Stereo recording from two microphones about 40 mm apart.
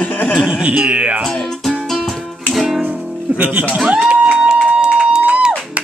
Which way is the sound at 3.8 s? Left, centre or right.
Right.